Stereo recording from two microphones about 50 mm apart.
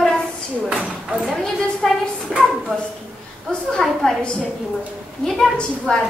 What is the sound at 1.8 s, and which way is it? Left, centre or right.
Speech, centre.